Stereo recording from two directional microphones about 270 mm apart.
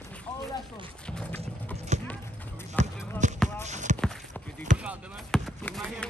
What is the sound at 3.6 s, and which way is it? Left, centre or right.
Clip-clop, right.